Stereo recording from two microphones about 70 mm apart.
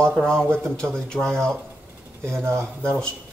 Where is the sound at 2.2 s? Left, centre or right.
Right.